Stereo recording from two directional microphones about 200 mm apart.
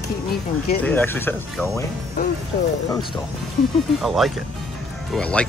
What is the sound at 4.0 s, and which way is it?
Speech, centre (ahead or behind).